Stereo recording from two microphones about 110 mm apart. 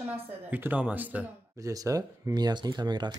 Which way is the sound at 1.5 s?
30° right (ahead or behind).